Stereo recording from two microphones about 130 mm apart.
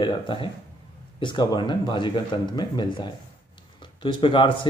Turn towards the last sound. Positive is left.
turn(degrees=40)  # may be behind; listen again after turning